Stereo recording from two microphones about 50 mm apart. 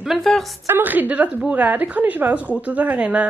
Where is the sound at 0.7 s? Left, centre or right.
Right.